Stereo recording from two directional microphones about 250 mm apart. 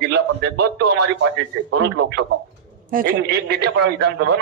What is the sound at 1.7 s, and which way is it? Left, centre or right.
A man's voice, right.